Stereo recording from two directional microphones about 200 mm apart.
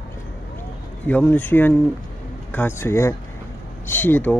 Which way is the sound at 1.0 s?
10° left (ahead or behind).